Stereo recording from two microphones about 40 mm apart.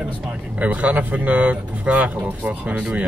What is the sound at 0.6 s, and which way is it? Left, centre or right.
Speech, right.